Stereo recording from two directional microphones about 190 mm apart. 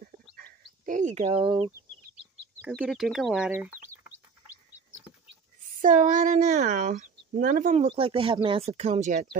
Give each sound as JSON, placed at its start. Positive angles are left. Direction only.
{"t": 0.0, "sound": "bird", "side_deg": -45}
{"t": 2.6, "sound": "chicken", "side_deg": -5}
{"t": 5.8, "sound": "speech", "side_deg": -40}